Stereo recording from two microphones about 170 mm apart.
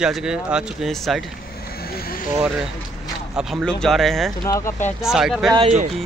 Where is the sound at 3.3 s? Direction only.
5° right (ahead or behind).